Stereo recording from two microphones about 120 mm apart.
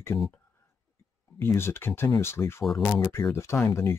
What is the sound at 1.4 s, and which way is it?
Speech, 20° left (ahead or behind).